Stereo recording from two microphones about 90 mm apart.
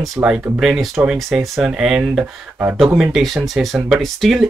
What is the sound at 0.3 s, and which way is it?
Speech, 20° right (ahead or behind).